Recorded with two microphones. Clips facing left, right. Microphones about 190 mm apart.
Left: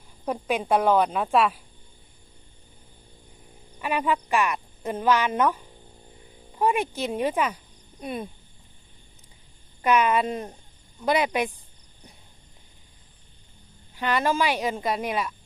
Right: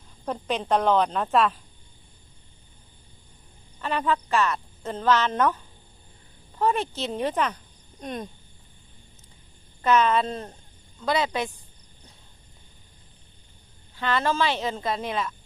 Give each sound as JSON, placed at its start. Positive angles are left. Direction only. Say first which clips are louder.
{"t": 0.2, "sound": "speech", "louder": "left 2 dB", "side_deg": 10}
{"t": 3.8, "sound": "speech", "louder": "even", "side_deg": 10}
{"t": 6.6, "sound": "speech", "louder": "left 1 dB", "side_deg": 10}
{"t": 9.8, "sound": "speech", "louder": "even", "side_deg": 10}
{"t": 13.9, "sound": "speech", "louder": "left 1 dB", "side_deg": 15}